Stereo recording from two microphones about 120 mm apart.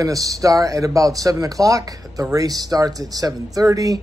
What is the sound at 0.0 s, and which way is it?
Speech, 30° right (ahead or behind).